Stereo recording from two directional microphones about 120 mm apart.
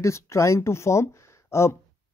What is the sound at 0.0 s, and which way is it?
Speech, 25° left (ahead or behind).